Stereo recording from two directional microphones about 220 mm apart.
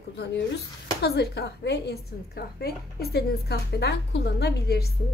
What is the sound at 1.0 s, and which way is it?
A woman's voice, 50° left (ahead or behind).